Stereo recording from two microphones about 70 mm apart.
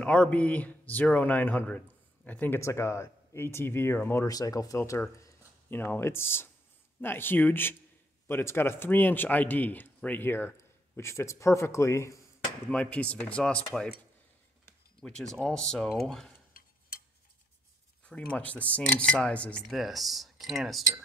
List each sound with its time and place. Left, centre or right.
0.0 s speech: centre
2.6 s speech: left
4.3 s speech: left
4.7 s a man's voice: left
5.7 s a man's voice: left
12.6 s speech: centre
15.0 s speech: centre
18.0 s speech: centre
19.7 s speech: centre